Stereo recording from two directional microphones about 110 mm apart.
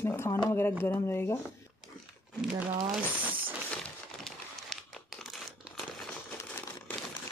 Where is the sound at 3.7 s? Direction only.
5° left (ahead or behind).